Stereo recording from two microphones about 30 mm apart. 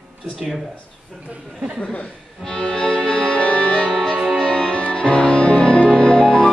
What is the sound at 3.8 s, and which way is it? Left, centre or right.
Music, centre.